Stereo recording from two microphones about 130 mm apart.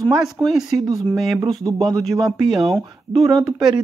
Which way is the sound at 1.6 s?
25° right (ahead or behind).